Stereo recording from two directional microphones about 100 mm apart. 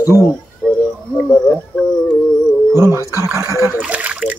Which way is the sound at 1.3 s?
10° left (ahead or behind).